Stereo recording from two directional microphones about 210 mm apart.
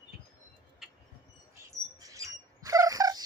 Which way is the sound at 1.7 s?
15° right (ahead or behind).